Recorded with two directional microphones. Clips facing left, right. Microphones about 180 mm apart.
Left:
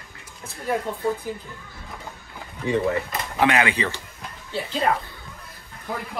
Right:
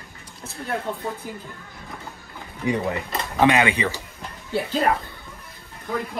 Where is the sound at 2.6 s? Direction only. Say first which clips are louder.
Left 2 dB; 20° right (ahead or behind).